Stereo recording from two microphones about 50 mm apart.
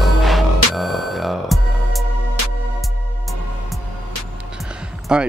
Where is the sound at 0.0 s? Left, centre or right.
Centre.